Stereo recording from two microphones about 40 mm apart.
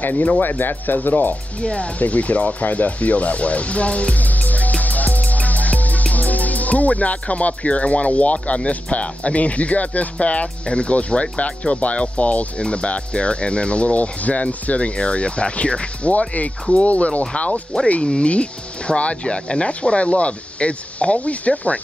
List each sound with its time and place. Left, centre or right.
0.0 s speech: left
0.4 s speech: left
1.6 s speech: left